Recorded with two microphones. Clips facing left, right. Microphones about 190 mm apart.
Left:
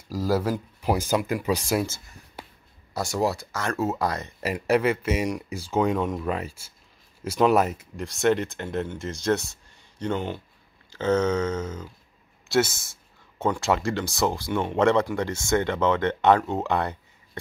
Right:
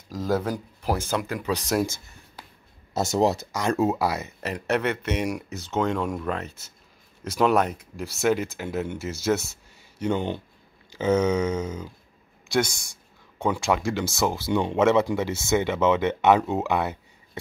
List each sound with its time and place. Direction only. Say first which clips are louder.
0.1 s speech: left 1 dB; 5° left (ahead or behind)
2.9 s speech: right 3 dB; 20° right (ahead or behind)
4.4 s speech: left 4 dB; 5° left (ahead or behind); by 11.9 s 10° right (ahead or behind)
12.4 s a sound: left 2 dB; 5° left (ahead or behind)
13.5 s speech: even; centre (ahead or behind)